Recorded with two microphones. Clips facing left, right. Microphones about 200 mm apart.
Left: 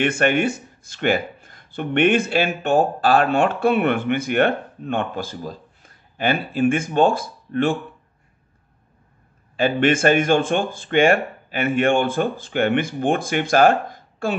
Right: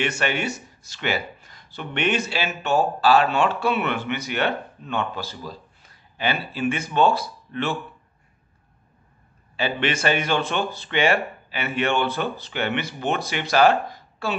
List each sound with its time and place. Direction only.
0.0 s speech: 55° left (ahead or behind)
9.6 s speech: 50° left (ahead or behind)